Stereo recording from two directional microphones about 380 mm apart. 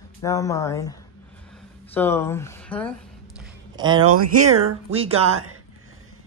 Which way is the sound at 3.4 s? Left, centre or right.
Centre.